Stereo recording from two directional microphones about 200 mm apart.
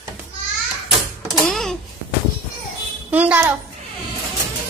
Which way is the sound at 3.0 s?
10° right (ahead or behind).